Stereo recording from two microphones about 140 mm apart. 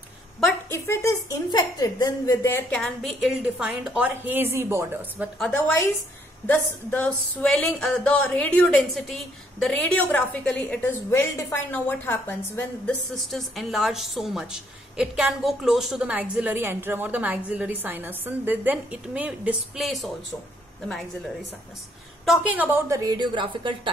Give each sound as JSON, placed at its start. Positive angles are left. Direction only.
{"t": 0.7, "sound": "speech", "side_deg": 20}
{"t": 2.8, "sound": "a woman's voice", "side_deg": 0}
{"t": 6.4, "sound": "a sound", "side_deg": 15}
{"t": 13.1, "sound": "a woman's voice", "side_deg": 0}
{"t": 22.2, "sound": "a woman's voice", "side_deg": -5}